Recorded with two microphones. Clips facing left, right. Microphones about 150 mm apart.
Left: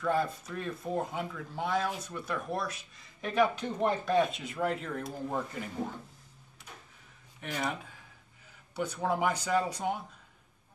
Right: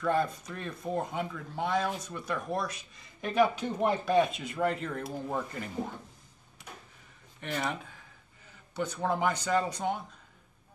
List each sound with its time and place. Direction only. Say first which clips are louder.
0.0 s speech: right 1 dB; 5° left (ahead or behind)
7.3 s speech: right 1 dB; 5° left (ahead or behind)